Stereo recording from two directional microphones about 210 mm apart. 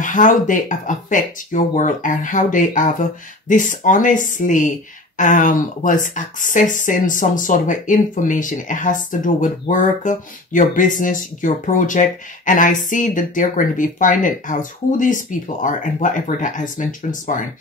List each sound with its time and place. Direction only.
0.0 s speech: 40° left (ahead or behind)